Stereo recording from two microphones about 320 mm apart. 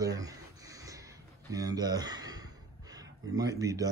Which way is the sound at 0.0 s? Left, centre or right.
Centre.